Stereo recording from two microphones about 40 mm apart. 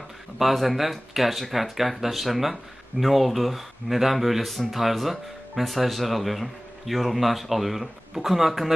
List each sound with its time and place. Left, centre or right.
0.4 s speech: centre